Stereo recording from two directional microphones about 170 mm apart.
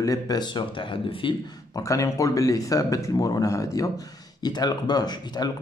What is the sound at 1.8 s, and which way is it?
A man's voice, 20° left (ahead or behind).